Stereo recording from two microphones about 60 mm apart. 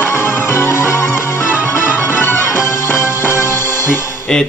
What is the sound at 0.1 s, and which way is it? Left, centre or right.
Music, left.